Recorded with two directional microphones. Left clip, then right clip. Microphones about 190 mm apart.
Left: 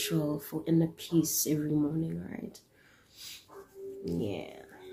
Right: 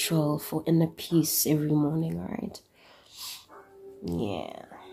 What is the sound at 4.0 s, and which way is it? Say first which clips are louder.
Speech: right 4 dB; 40° right (ahead or behind).